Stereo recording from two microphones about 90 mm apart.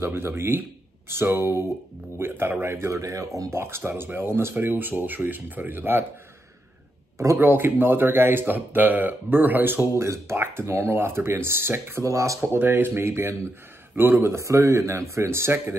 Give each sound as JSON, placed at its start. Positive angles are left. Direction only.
{"t": 0.0, "sound": "speech", "side_deg": -25}
{"t": 7.2, "sound": "speech", "side_deg": -30}
{"t": 12.5, "sound": "speech", "side_deg": -25}